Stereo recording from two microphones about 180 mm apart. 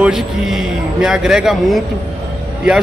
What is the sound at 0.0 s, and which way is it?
A man's voice, 5° right (ahead or behind).